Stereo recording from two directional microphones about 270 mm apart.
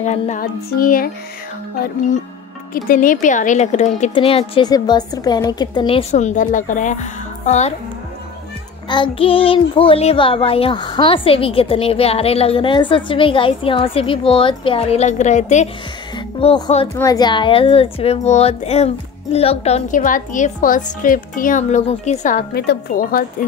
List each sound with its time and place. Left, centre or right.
0.0 s music: left
2.7 s child singing: left
8.8 s child singing: centre; by 23.2 s left